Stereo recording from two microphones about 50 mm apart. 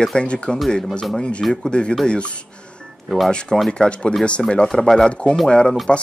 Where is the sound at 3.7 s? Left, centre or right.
Left.